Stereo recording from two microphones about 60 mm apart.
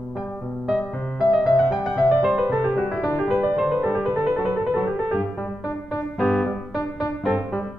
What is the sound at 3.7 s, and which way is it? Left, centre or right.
Music, centre.